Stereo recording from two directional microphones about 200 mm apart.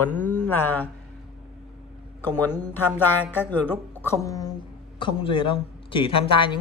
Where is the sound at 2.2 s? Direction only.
10° left (ahead or behind).